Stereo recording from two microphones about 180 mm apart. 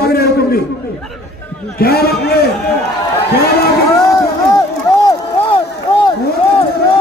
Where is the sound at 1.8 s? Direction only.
60° left (ahead or behind).